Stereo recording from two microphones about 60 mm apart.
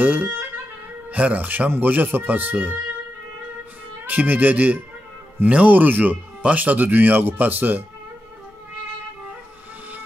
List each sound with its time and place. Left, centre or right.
0.0 s speech: right
4.0 s speech: right